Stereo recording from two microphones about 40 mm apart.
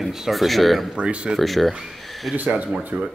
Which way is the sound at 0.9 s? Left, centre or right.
Right.